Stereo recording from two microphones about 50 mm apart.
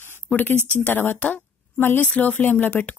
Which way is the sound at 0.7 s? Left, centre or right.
Left.